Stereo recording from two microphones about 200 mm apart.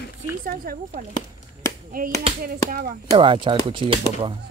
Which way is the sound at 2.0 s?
45° right (ahead or behind).